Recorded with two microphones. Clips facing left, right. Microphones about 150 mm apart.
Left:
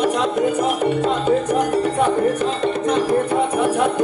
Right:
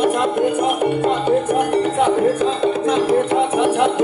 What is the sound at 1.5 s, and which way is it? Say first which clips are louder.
Music: right 1 dB; 60° right (ahead or behind).